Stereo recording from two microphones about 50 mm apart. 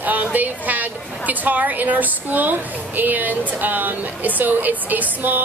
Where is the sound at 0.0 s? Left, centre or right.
Right.